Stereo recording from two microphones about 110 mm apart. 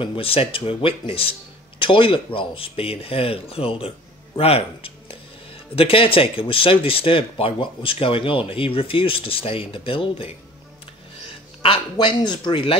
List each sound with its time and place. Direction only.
0.0 s speech: 55° left (ahead or behind)
11.6 s speech: 50° left (ahead or behind)